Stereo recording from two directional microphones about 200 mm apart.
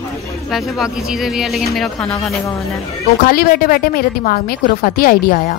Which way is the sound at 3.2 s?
50° left (ahead or behind).